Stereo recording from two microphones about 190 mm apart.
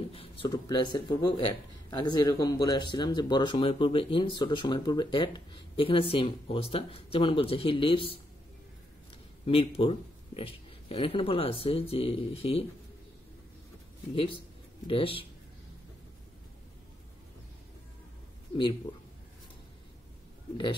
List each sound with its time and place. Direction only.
0.1 s speech: 30° left (ahead or behind)
9.5 s speech: 30° left (ahead or behind)
14.9 s speech: 30° left (ahead or behind)